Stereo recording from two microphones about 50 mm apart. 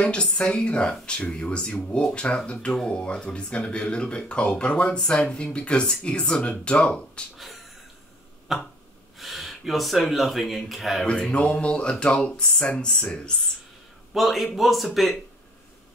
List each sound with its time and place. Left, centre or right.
0.0 s speech: left
8.5 s a man's voice: centre
11.1 s a sound: centre
11.6 s speech: centre
14.1 s a man's voice: centre